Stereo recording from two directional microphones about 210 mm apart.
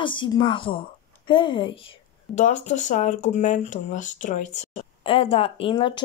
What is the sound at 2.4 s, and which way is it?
Speech, 35° left (ahead or behind).